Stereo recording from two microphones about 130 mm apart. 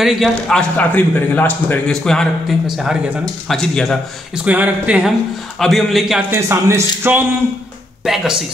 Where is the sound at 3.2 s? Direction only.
5° left (ahead or behind).